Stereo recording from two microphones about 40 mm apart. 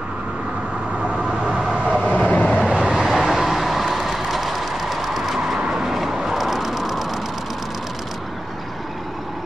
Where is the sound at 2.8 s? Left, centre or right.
Centre.